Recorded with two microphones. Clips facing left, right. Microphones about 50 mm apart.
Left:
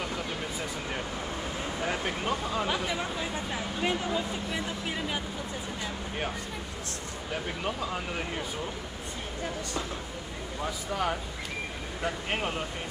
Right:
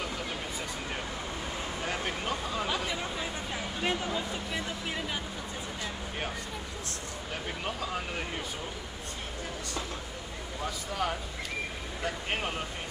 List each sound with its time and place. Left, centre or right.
1.9 s speech: centre
7.6 s speech: centre
10.6 s speech: centre